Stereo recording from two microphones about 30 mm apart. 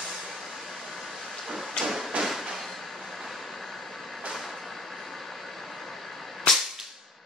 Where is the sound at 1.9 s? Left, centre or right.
Centre.